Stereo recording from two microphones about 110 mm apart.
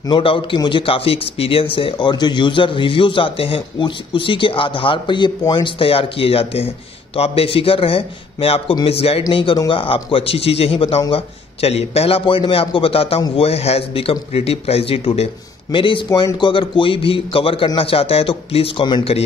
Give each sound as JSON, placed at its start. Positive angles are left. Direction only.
{"t": 0.1, "sound": "a man's voice", "side_deg": 50}
{"t": 9.3, "sound": "a man's voice", "side_deg": 50}
{"t": 16.1, "sound": "a man's voice", "side_deg": 40}